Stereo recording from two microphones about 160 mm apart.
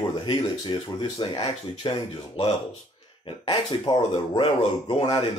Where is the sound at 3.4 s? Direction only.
30° left (ahead or behind).